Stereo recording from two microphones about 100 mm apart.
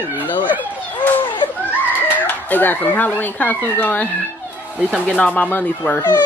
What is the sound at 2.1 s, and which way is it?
Speech, 15° left (ahead or behind).